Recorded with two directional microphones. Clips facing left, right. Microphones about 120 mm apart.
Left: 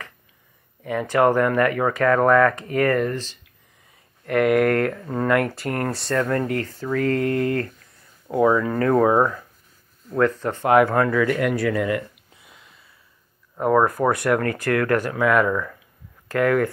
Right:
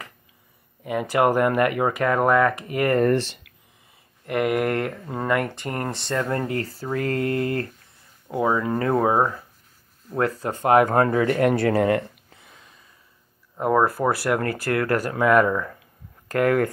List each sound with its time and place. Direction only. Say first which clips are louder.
0.8 s speech: left 2 dB; 10° right (ahead or behind)
3.1 s speech: right 8 dB; 65° right (ahead or behind)
4.3 s speech: left 4 dB; 5° right (ahead or behind)
6.0 s speech: left 3 dB; 25° right (ahead or behind)
8.3 s speech: left 4 dB; 15° right (ahead or behind)
10.1 s speech: left 3 dB; 35° right (ahead or behind)
11.8 s a sound: right 3 dB; 40° right (ahead or behind)
14.0 s speech: left 2 dB; centre (ahead or behind)
14.6 s speech: left 2 dB; 30° right (ahead or behind)